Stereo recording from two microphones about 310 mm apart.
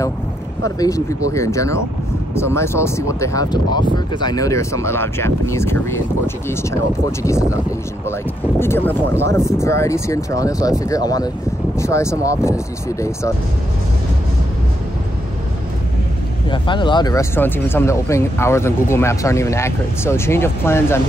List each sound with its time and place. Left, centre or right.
0.7 s speech: centre
8.5 s speech: centre
16.4 s speech: centre